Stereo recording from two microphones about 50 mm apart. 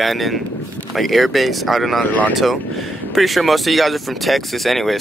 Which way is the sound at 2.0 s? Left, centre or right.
Left.